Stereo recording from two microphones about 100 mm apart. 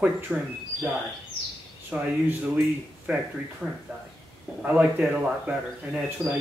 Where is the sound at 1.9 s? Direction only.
15° right (ahead or behind).